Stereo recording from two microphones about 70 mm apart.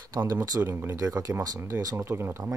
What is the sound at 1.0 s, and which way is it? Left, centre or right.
Speech, right.